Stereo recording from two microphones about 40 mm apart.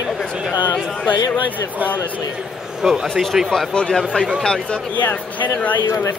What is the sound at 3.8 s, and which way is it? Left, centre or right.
Speech, left.